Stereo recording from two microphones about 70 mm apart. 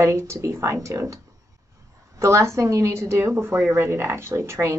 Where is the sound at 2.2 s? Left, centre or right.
Right.